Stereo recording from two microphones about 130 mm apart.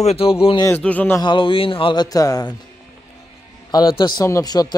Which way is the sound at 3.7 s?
35° left (ahead or behind).